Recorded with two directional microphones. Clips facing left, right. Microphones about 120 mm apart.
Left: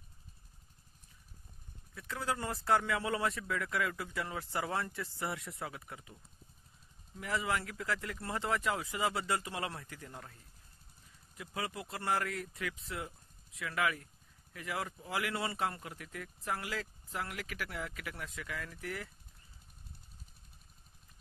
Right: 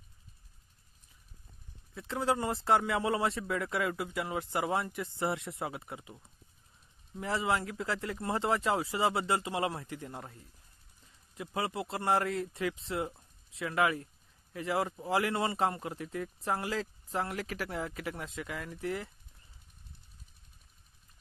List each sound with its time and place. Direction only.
2.0 s speech: 25° right (ahead or behind)
7.2 s speech: 30° right (ahead or behind)
11.3 s speech: 30° right (ahead or behind)